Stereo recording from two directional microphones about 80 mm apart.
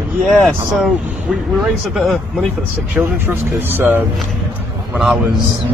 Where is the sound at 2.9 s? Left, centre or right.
Right.